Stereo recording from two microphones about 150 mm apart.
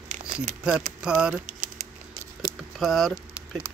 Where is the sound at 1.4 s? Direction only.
55° right (ahead or behind).